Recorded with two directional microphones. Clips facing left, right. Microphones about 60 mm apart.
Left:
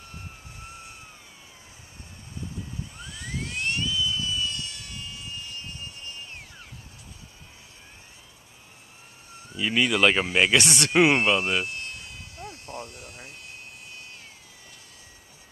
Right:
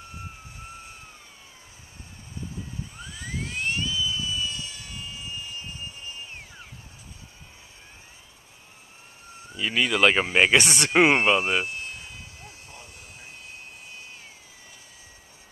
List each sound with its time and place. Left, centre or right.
3.0 s vehicle: centre
9.5 s speech: centre
10.9 s a sound: centre